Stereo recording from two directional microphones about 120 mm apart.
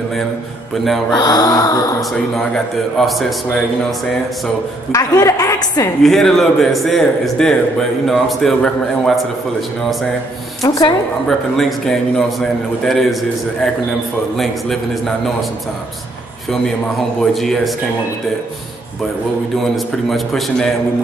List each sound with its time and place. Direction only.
1.1 s speech: 35° left (ahead or behind)
2.0 s a man's voice: 5° left (ahead or behind)
4.9 s a woman's voice: 30° left (ahead or behind)
6.0 s a man's voice: 5° left (ahead or behind)
11.2 s a man's voice: 5° left (ahead or behind)
17.2 s a man's voice: 5° left (ahead or behind)
20.1 s a man's voice: centre (ahead or behind)